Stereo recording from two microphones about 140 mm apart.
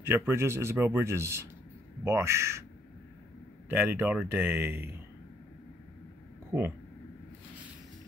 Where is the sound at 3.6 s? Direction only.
15° right (ahead or behind).